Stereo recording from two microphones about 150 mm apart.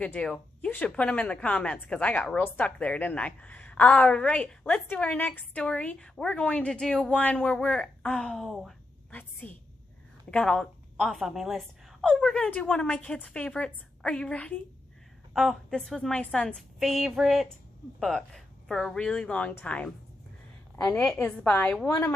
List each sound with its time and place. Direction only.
0.0 s a woman's voice: 5° left (ahead or behind)